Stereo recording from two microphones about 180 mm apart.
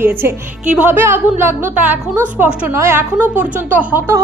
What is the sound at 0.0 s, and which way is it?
A woman's voice, 10° right (ahead or behind).